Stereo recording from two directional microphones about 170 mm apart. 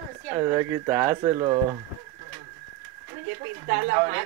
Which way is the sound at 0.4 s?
20° right (ahead or behind).